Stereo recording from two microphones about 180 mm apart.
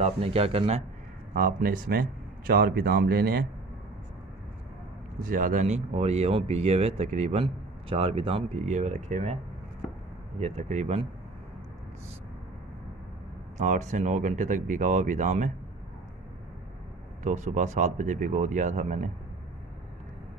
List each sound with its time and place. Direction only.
0.0 s speech: 35° right (ahead or behind)
1.3 s speech: 55° right (ahead or behind)
5.2 s speech: 50° right (ahead or behind)
10.4 s speech: 35° right (ahead or behind)
13.6 s speech: 40° right (ahead or behind)
17.2 s speech: 40° right (ahead or behind)